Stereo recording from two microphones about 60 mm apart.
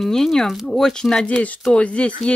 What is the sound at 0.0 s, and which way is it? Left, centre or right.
Speech, centre.